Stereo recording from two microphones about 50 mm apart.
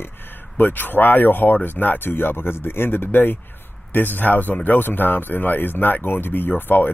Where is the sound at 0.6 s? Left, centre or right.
Left.